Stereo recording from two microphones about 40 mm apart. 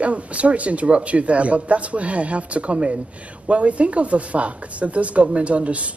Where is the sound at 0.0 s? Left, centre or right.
Right.